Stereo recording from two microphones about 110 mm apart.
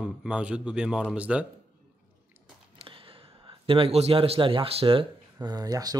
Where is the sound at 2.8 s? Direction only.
55° right (ahead or behind).